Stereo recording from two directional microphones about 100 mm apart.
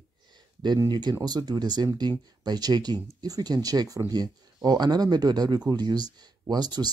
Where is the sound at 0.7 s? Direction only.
45° right (ahead or behind).